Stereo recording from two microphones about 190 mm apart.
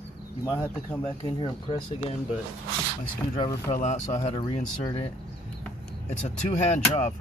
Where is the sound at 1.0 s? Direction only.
30° left (ahead or behind).